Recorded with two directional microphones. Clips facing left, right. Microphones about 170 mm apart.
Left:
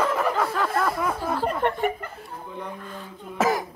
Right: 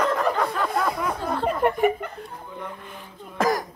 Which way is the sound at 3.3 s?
5° left (ahead or behind).